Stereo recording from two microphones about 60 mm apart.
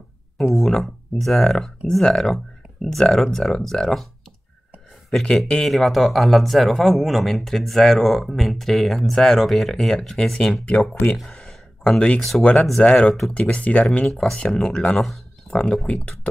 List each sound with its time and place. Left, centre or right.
0.5 s speech: centre
5.6 s speech: centre
10.5 s speech: left
11.3 s a sound: centre
12.2 s speech: centre
12.8 s speech: centre
14.0 s speech: centre